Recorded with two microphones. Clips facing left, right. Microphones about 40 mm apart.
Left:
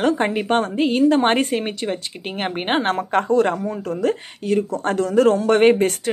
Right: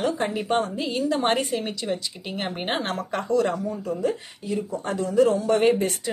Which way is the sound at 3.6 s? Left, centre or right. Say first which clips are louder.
Left 4 dB; left.